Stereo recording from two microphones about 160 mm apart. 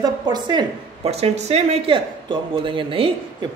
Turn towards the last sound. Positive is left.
turn(degrees=-30)  # may be behind; listen again after turning